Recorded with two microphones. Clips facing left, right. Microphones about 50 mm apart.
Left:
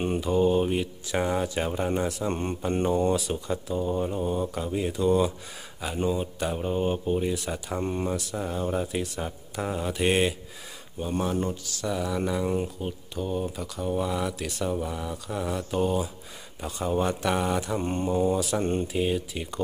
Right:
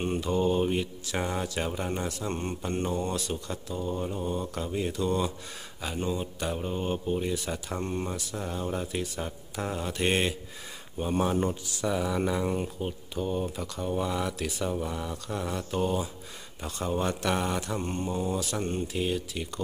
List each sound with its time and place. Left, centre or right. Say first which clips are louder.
0.0 s speech: left 3 dB; centre
2.2 s speech: left 4 dB; centre
11.0 s speech: right 1 dB; centre
17.7 s speech: left 5 dB; centre